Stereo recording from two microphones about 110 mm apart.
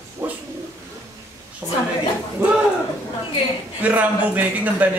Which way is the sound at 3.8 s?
15° right (ahead or behind).